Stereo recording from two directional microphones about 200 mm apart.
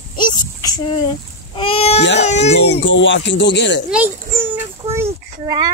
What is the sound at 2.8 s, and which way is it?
Speech, 65° left (ahead or behind).